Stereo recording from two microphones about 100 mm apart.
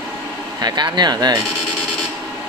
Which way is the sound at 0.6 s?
45° right (ahead or behind).